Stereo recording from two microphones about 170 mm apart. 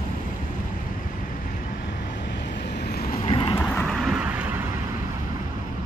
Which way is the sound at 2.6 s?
70° left (ahead or behind).